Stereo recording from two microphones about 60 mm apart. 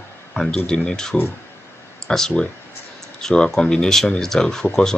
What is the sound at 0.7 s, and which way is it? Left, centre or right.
Speech, centre.